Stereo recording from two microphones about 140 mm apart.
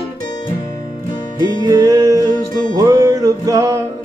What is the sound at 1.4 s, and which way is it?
Music, 25° right (ahead or behind).